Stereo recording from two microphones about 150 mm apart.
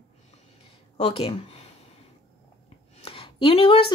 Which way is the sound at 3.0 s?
40° left (ahead or behind).